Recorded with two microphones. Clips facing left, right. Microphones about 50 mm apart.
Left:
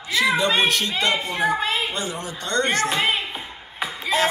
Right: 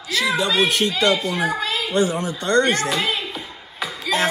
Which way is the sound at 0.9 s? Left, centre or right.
Left.